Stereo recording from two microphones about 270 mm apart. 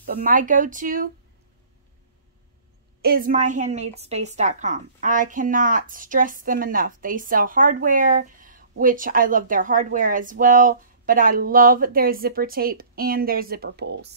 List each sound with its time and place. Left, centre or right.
0.0 s speech: right
3.0 s a woman's voice: right